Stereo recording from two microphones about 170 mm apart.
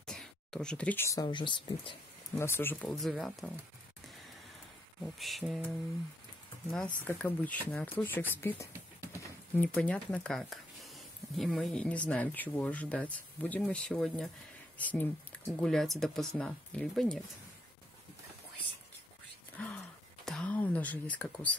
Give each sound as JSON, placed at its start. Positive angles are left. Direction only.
{"t": 0.0, "sound": "speech", "side_deg": 5}
{"t": 2.3, "sound": "speech", "side_deg": 15}
{"t": 5.0, "sound": "speech", "side_deg": 0}
{"t": 7.1, "sound": "speech", "side_deg": 10}
{"t": 19.5, "sound": "a sound", "side_deg": 10}
{"t": 20.2, "sound": "whispering", "side_deg": 5}